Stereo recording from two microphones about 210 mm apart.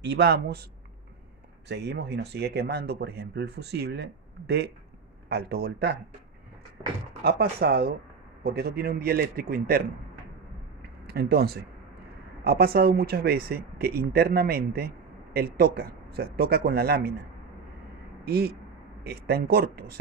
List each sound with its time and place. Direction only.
0.0 s speech: 55° right (ahead or behind)
1.7 s speech: 55° right (ahead or behind)
7.2 s speech: 50° right (ahead or behind)
11.1 s speech: 50° right (ahead or behind)
18.2 s speech: 50° right (ahead or behind)